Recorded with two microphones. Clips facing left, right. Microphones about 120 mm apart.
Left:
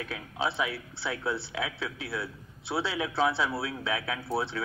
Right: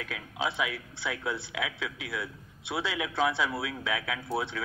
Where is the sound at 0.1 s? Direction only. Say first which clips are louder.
Left 1 dB; 30° left (ahead or behind).